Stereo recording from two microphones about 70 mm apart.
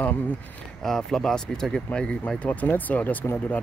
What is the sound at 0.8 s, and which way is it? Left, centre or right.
Speech, centre.